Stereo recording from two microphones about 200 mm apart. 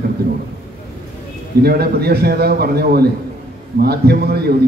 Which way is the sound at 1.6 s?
50° right (ahead or behind).